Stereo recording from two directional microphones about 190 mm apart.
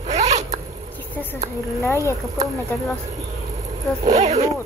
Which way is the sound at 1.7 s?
15° left (ahead or behind).